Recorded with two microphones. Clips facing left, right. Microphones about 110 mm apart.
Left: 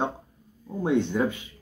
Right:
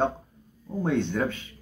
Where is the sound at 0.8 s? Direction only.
15° left (ahead or behind).